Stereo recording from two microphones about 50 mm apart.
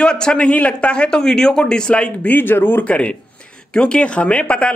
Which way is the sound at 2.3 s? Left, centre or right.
Left.